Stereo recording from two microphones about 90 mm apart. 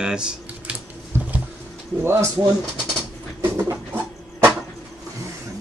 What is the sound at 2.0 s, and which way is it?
Speech, 25° right (ahead or behind).